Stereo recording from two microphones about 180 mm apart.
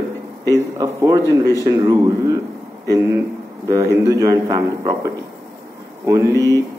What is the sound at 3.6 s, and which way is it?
A man's voice, 15° right (ahead or behind).